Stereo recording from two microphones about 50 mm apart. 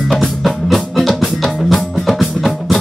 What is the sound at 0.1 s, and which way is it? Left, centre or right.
Music, centre.